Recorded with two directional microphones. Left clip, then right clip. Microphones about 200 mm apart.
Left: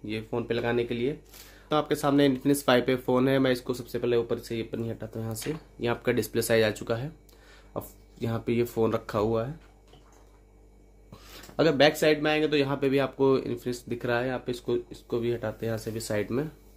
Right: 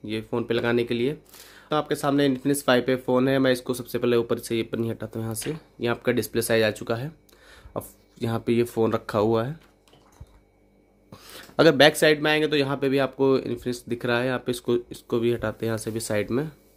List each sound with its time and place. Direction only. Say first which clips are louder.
0.0 s speech: right 3 dB; 25° right (ahead or behind)
1.7 s speech: right 1 dB; 15° right (ahead or behind); by 9.5 s 30° right (ahead or behind)
11.1 s speech: right 4 dB; 30° right (ahead or behind)